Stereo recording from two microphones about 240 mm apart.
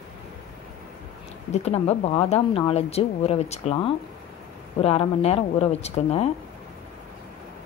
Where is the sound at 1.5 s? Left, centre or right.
Left.